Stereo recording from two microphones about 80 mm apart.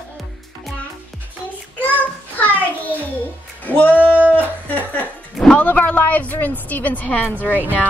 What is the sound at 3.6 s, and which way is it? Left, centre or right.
Music, left.